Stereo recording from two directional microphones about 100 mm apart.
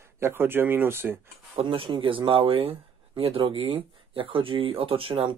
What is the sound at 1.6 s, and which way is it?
Speech, 60° right (ahead or behind).